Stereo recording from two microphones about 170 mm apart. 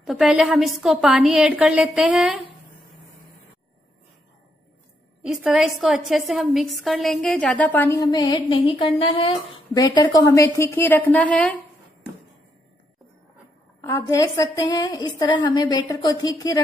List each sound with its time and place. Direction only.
0.0 s a woman's voice: centre (ahead or behind)
5.2 s a woman's voice: 5° right (ahead or behind); by 8.0 s 10° left (ahead or behind)
8.1 s a woman's voice: 25° left (ahead or behind); by 11.5 s 10° left (ahead or behind)
13.7 s a woman's voice: 20° left (ahead or behind)